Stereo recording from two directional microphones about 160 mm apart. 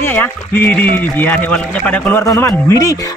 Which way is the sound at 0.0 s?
15° left (ahead or behind).